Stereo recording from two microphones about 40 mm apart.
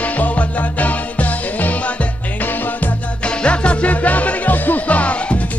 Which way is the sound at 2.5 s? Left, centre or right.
Left.